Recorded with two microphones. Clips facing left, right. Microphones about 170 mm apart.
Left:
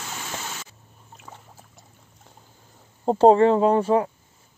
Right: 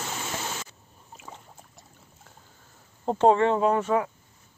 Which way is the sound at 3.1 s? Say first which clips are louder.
Left 5 dB; 35° left (ahead or behind).